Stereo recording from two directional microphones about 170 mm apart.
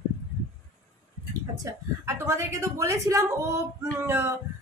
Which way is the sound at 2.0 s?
15° right (ahead or behind).